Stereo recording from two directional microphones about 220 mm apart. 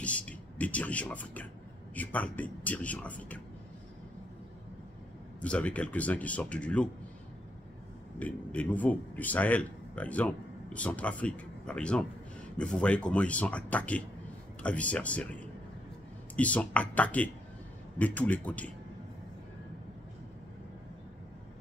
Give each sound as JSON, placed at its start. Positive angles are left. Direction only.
{"t": 0.0, "sound": "a sound", "side_deg": 5}
{"t": 2.0, "sound": "a man's voice", "side_deg": 5}
{"t": 5.4, "sound": "speech", "side_deg": 5}
{"t": 8.2, "sound": "a man's voice", "side_deg": 5}
{"t": 16.3, "sound": "a man's voice", "side_deg": 5}